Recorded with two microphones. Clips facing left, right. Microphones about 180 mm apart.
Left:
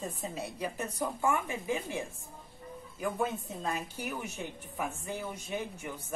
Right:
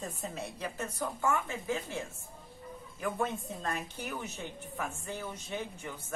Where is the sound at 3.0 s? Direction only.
5° left (ahead or behind).